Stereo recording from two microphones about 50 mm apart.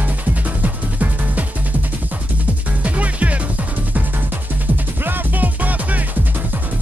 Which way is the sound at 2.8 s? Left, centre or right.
Right.